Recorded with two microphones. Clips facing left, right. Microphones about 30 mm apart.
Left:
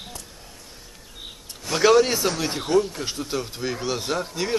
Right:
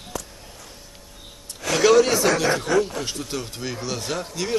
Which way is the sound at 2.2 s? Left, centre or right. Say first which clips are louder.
Right 5 dB; right.